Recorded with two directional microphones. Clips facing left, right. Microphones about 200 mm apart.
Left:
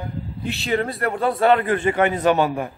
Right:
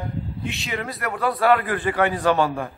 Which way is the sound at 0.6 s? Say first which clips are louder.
Left 9 dB; 30° left (ahead or behind).